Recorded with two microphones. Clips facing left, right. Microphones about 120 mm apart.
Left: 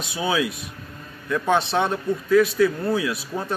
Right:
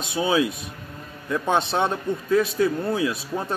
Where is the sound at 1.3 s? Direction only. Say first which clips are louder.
Left 1 dB; 25° right (ahead or behind).